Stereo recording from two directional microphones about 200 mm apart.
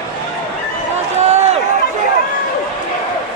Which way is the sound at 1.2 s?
30° right (ahead or behind).